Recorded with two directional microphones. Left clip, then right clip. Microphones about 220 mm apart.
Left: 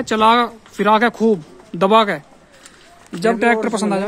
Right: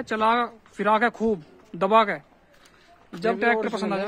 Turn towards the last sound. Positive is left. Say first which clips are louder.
# left 7 dB
turn(degrees=0)  # may be behind; listen again after turning